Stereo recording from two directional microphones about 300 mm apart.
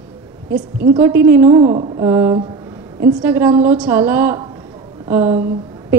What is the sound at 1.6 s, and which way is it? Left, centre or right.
A woman's voice, centre.